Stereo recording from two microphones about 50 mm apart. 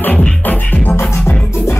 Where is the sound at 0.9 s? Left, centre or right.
Left.